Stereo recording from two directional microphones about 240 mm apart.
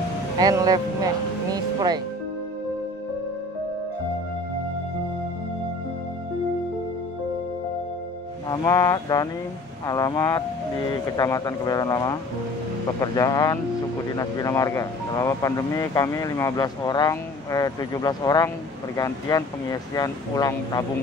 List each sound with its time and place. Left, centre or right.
0.4 s music: centre
8.5 s speech: centre